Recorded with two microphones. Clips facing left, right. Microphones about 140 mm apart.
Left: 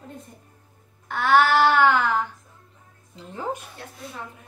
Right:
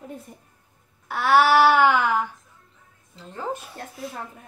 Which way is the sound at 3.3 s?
15° left (ahead or behind).